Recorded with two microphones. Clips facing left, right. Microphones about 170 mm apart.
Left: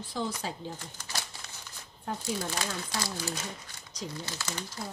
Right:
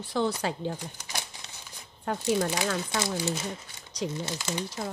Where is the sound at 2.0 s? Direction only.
75° right (ahead or behind).